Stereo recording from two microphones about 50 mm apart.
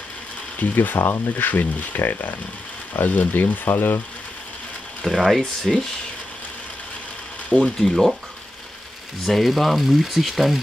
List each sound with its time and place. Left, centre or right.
0.6 s speech: left
0.9 s speech: left
5.1 s speech: centre
5.4 s speech: centre
7.4 s speech: left
7.8 s speech: centre
9.2 s speech: centre